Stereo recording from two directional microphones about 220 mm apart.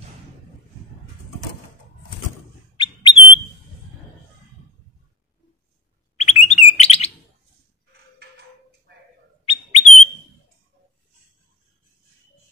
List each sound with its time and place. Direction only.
2.8 s bird: 25° left (ahead or behind)
6.1 s chirp: 30° left (ahead or behind)
9.5 s bird: 30° left (ahead or behind)